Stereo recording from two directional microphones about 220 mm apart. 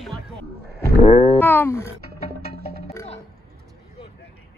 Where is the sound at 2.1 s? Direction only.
45° right (ahead or behind).